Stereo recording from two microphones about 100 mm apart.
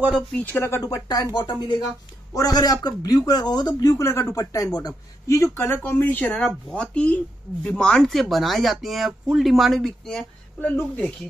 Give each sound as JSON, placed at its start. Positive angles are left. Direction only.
{"t": 0.4, "sound": "speech", "side_deg": 15}
{"t": 0.7, "sound": "speech", "side_deg": 35}
{"t": 10.6, "sound": "speech", "side_deg": 15}